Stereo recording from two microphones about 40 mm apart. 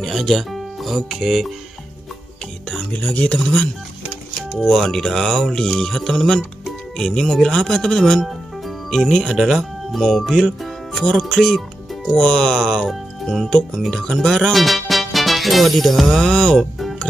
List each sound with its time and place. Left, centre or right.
0.1 s speech: centre
2.8 s speech: left
4.6 s speech: centre
4.8 s speech: centre